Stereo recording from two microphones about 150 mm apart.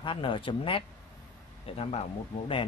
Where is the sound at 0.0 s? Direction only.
35° left (ahead or behind).